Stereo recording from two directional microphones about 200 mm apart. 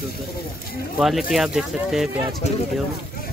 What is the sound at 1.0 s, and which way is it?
Speech, centre (ahead or behind).